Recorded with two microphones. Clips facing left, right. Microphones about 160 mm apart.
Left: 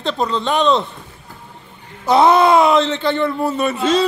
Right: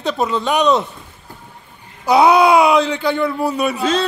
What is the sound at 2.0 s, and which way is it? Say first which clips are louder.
A man's voice: right 1 dB; 10° right (ahead or behind).